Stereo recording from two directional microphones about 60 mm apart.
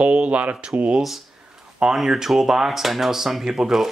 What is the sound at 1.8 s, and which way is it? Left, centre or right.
Speech, centre.